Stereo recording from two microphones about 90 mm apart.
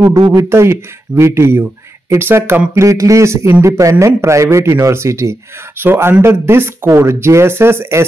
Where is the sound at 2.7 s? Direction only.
35° right (ahead or behind).